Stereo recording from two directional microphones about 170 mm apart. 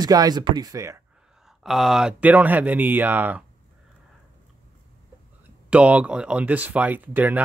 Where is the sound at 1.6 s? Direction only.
Centre (ahead or behind).